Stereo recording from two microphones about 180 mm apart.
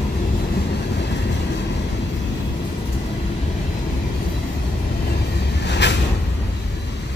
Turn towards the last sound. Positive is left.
turn(degrees=75)  # may be behind; listen again after turning